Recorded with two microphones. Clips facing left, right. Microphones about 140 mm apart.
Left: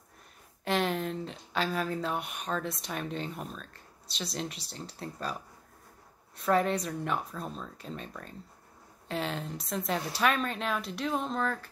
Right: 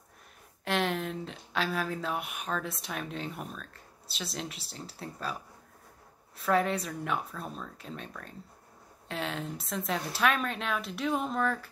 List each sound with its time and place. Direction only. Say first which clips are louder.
0.7 s speech: left 1 dB; centre (ahead or behind)
6.3 s speech: left 1 dB; centre (ahead or behind)